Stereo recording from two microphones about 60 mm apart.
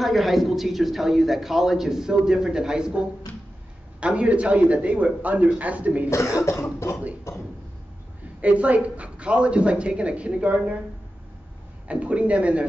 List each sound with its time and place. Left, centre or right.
0.0 s speech: centre; by 6.0 s right
8.4 s speech: right
11.9 s speech: right